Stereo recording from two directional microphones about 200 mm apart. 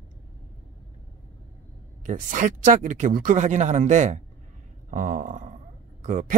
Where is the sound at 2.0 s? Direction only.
40° right (ahead or behind).